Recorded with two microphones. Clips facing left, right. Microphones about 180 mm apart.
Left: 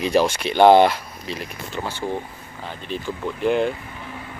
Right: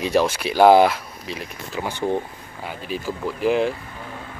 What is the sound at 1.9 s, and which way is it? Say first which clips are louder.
Speech: right 5 dB; 15° right (ahead or behind).